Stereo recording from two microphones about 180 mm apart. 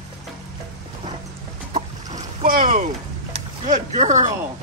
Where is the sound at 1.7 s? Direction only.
45° right (ahead or behind).